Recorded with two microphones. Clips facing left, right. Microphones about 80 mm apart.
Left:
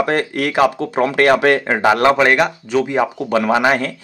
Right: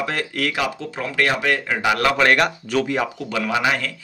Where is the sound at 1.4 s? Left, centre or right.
Left.